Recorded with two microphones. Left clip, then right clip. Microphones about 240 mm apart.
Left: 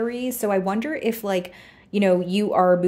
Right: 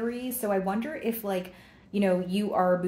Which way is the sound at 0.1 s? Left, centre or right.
Left.